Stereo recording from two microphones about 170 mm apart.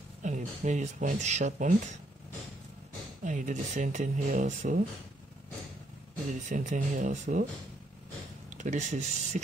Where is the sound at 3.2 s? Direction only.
45° right (ahead or behind).